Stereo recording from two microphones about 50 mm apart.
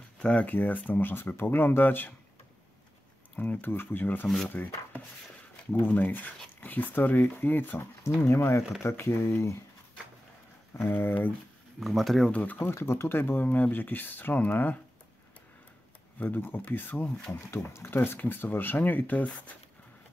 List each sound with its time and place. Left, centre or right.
0.2 s speech: left
0.5 s speech: left
3.3 s speech: left
3.6 s speech: left
7.8 s speech: left
10.9 s speech: left
11.8 s speech: centre
12.3 s speech: left
12.7 s speech: left
13.2 s speech: left
16.2 s speech: left
17.7 s speech: left